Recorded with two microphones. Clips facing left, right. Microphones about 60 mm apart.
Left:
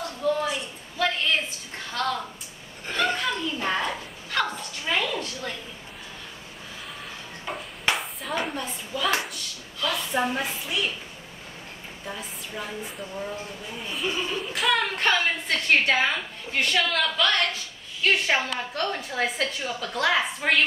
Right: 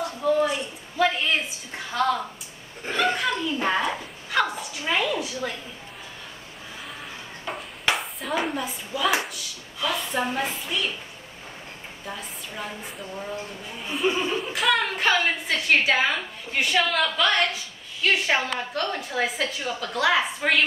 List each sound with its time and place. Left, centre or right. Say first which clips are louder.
0.0 s a sound: right 3 dB; centre
7.4 s a sound: right 1 dB; centre
10.1 s a woman's voice: even; centre
12.1 s a woman's voice: even; centre
14.0 s speech: right 5 dB; right
14.5 s a woman's voice: even; centre